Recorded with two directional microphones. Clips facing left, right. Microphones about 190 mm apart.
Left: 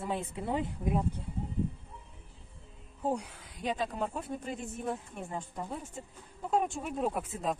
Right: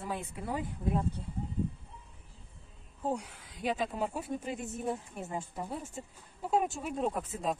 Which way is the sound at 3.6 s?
5° right (ahead or behind).